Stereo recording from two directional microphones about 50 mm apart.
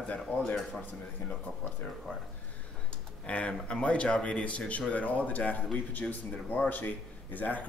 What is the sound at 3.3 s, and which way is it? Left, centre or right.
Speech, left.